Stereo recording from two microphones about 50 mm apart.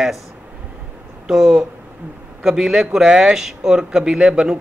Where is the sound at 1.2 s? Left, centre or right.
Centre.